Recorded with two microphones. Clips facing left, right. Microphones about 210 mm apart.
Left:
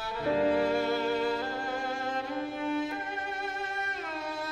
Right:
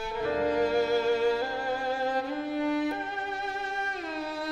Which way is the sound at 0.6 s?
40° right (ahead or behind).